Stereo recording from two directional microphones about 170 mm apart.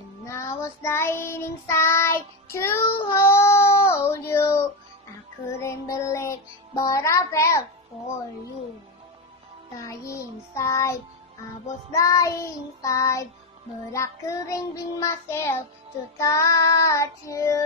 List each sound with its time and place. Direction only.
0.3 s child singing: 15° left (ahead or behind)
5.6 s music: 15° left (ahead or behind)
9.8 s music: 20° left (ahead or behind)
16.2 s child singing: 20° left (ahead or behind)